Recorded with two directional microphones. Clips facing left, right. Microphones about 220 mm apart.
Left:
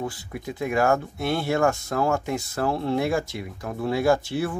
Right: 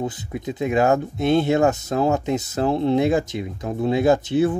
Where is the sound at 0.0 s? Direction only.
20° right (ahead or behind).